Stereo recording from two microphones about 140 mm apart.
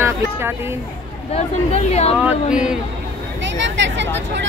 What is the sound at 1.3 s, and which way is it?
Speech, 50° left (ahead or behind).